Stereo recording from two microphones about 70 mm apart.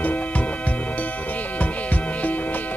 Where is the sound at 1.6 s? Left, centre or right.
Left.